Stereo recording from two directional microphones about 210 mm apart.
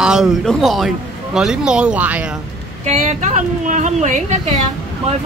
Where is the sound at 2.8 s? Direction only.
35° right (ahead or behind).